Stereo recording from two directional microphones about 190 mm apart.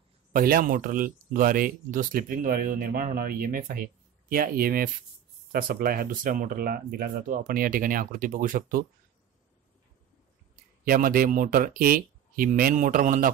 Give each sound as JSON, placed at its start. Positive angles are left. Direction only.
{"t": 0.3, "sound": "speech", "side_deg": -50}
{"t": 10.9, "sound": "speech", "side_deg": -50}